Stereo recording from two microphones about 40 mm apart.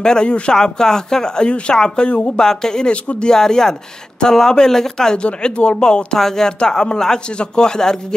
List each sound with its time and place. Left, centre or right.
0.0 s speech: centre
2.9 s speech: left
3.3 s speech: centre
5.2 s speech: left